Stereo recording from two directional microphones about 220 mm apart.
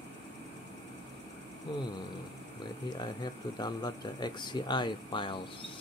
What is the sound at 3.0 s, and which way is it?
Speech, 20° left (ahead or behind).